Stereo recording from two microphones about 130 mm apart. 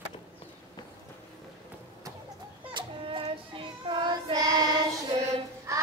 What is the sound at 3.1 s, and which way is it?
Child singing, 45° right (ahead or behind).